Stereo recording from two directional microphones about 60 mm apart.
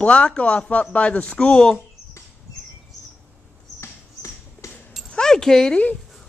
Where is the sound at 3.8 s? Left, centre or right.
Left.